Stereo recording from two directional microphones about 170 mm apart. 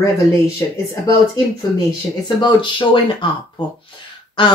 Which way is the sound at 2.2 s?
25° left (ahead or behind).